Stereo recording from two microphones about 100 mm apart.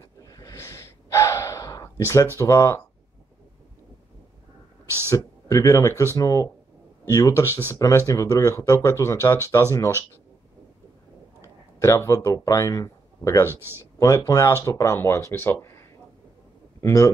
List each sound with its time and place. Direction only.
0.2 s gasp: 35° left (ahead or behind)
2.2 s speech: 30° left (ahead or behind)
5.1 s speech: 35° left (ahead or behind)
11.4 s speech: 30° left (ahead or behind)
16.8 s speech: 30° left (ahead or behind)